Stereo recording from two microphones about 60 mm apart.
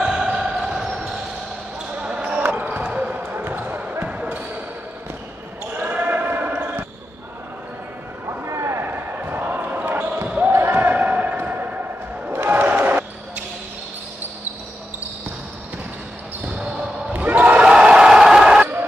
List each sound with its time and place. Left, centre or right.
0.0 s basketball bounce: centre
2.5 s basketball bounce: right
5.9 s basketball bounce: right
8.5 s a sound: right
8.8 s basketball bounce: right
12.3 s crowd: right
16.4 s basketball bounce: centre
17.1 s a sound: right; by 18.7 s centre